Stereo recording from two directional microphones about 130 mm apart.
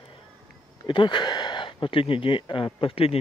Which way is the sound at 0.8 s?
35° left (ahead or behind).